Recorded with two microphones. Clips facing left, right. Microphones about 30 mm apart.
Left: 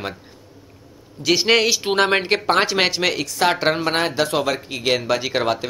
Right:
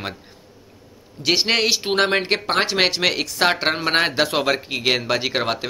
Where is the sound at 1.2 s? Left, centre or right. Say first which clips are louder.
Left 1 dB; right.